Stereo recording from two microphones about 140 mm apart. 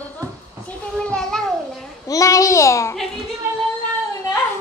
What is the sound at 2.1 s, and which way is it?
Speech, 25° left (ahead or behind).